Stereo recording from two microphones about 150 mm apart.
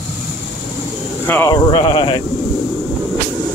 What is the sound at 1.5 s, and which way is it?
Speech, 25° left (ahead or behind).